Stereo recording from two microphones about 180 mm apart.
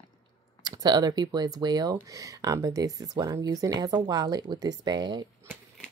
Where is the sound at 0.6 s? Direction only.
25° right (ahead or behind).